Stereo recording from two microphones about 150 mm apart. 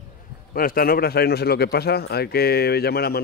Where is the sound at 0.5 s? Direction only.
75° left (ahead or behind).